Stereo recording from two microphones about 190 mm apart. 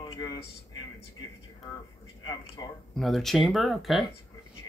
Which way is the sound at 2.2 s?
20° left (ahead or behind).